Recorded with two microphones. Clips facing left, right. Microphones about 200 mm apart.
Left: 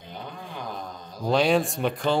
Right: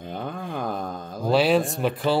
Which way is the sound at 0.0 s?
50° right (ahead or behind).